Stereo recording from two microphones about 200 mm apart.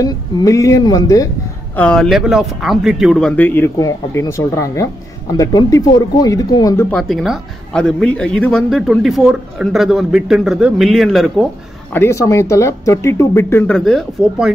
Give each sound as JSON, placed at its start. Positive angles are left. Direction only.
{"t": 0.0, "sound": "speech", "side_deg": 20}
{"t": 1.8, "sound": "a woman's voice", "side_deg": 5}
{"t": 6.9, "sound": "a woman's voice", "side_deg": 0}
{"t": 11.9, "sound": "speech", "side_deg": 10}